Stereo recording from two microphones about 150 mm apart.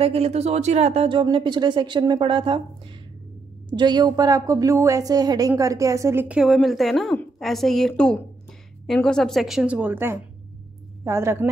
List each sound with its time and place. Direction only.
0.0 s speech: 45° right (ahead or behind)
3.7 s a woman's voice: 30° right (ahead or behind)